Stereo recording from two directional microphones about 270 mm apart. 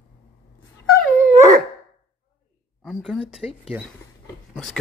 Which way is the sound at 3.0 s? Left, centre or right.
Centre.